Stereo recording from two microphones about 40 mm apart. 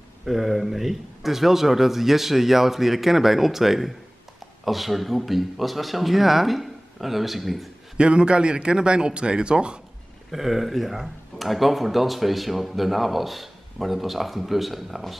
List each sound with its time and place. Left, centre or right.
0.2 s speech: centre
8.0 s a man's voice: right
10.3 s speech: centre